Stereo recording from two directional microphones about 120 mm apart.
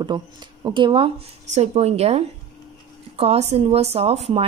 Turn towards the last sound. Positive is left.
turn(degrees=-60)  # may be behind; listen again after turning